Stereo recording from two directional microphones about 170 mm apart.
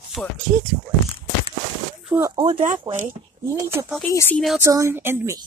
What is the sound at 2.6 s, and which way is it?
Speech, 50° right (ahead or behind).